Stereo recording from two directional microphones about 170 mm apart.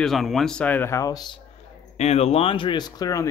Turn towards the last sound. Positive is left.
turn(degrees=20)  # may be behind; listen again after turning